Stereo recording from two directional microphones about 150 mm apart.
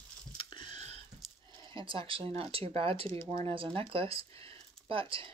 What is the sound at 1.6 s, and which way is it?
Speech, 35° right (ahead or behind).